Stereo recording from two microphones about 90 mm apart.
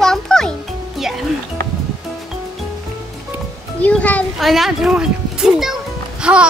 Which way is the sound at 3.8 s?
15° left (ahead or behind).